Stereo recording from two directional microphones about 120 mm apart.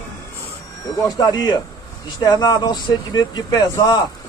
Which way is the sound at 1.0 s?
30° left (ahead or behind).